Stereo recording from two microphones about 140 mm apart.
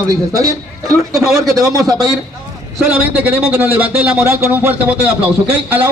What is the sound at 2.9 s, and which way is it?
A man's voice, 10° right (ahead or behind).